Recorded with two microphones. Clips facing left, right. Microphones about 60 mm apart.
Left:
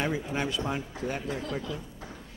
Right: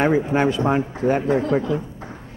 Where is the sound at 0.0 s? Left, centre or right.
Right.